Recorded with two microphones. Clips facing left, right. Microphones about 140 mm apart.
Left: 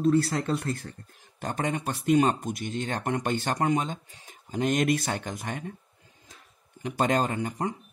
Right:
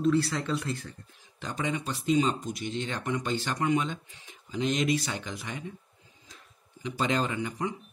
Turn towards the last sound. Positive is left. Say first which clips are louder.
# left 2 dB
turn(degrees=45)  # may be behind; listen again after turning